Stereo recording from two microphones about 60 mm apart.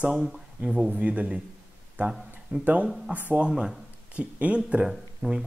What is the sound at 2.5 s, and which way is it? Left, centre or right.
Speech, right.